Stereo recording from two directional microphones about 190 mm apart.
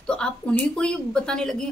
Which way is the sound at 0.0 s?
5° left (ahead or behind).